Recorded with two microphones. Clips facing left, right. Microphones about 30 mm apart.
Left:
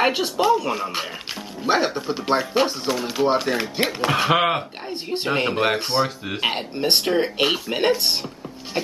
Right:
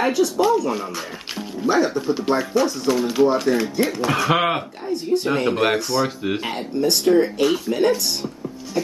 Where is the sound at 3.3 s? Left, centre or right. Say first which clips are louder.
Right 2 dB; left.